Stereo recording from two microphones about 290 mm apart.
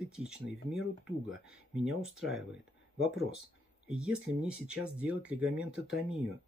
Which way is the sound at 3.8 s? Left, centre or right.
Centre.